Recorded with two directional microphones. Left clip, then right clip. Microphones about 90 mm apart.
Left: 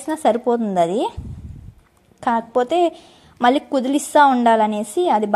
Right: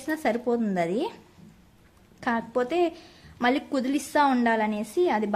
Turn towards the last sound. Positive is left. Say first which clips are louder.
# left 7 dB
turn(degrees=65)  # may be behind; listen again after turning